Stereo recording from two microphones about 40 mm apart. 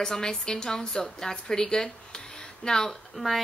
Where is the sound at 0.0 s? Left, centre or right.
Centre.